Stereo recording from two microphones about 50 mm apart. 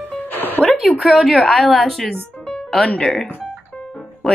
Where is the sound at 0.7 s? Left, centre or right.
Centre.